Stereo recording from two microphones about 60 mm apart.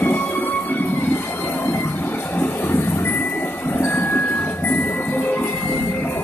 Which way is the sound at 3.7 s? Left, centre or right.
Left.